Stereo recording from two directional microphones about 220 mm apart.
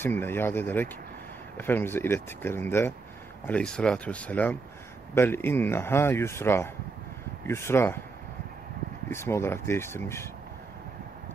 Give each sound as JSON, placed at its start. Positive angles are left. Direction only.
{"t": 0.0, "sound": "speech", "side_deg": 10}
{"t": 9.1, "sound": "speech", "side_deg": 10}